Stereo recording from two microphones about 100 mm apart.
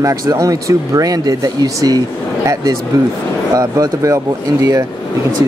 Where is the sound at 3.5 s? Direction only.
35° right (ahead or behind).